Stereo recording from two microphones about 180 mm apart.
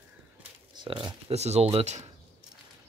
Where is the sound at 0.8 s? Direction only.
25° right (ahead or behind).